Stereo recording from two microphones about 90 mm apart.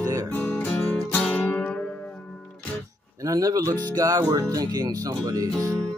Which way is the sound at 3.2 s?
40° right (ahead or behind).